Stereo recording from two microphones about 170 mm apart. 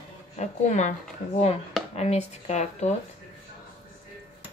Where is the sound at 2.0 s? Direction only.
40° left (ahead or behind).